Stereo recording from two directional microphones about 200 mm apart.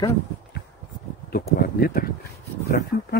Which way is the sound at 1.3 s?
50° left (ahead or behind).